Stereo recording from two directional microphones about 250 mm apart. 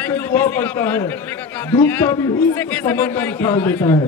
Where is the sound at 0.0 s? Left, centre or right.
Centre.